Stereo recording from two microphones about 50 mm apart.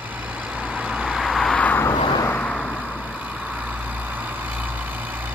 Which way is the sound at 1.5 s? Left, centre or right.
Left.